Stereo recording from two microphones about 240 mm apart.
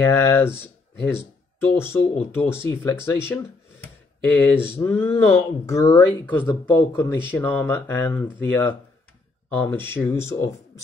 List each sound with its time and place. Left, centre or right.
0.0 s speech: centre